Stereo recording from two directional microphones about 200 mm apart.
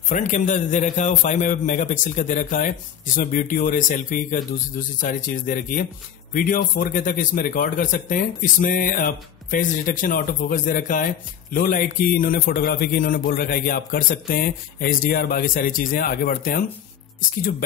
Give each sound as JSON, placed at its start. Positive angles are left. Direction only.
{"t": 0.1, "sound": "a man's voice", "side_deg": 40}